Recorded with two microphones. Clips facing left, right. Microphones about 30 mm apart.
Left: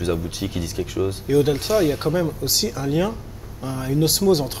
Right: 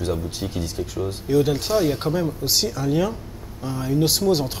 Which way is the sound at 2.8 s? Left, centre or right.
Left.